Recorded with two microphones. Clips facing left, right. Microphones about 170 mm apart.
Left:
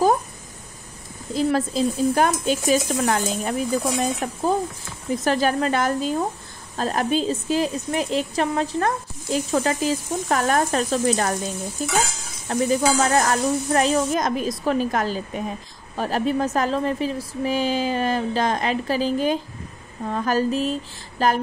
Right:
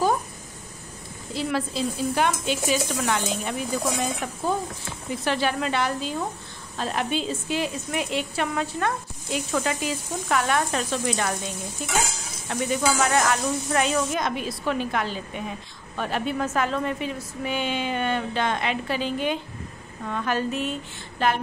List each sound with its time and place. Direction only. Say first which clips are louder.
1.3 s a woman's voice: left 6 dB; 45° left (ahead or behind)